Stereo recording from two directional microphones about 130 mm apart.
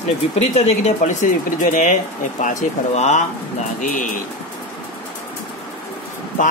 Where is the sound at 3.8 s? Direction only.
75° left (ahead or behind).